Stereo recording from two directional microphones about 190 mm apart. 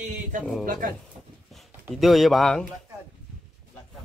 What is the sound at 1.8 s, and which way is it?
Speech, centre (ahead or behind).